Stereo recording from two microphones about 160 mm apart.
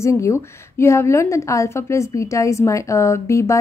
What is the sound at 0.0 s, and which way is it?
A woman's voice, 15° left (ahead or behind).